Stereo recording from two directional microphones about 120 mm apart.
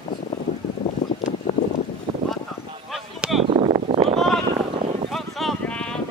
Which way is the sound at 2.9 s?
Centre (ahead or behind).